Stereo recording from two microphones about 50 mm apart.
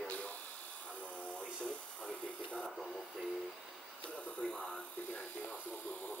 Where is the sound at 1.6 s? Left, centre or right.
Centre.